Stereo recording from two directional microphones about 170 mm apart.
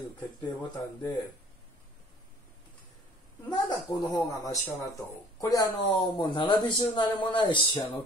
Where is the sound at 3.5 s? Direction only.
25° left (ahead or behind).